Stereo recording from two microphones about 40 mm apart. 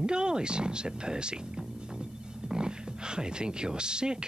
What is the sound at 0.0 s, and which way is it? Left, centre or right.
Speech, right.